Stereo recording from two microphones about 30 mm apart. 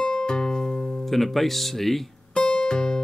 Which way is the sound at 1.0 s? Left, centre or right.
Centre.